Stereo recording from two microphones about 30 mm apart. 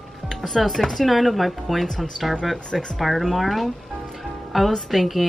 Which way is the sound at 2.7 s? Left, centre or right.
Centre.